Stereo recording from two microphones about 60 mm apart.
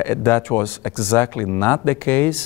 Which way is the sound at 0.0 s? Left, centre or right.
Left.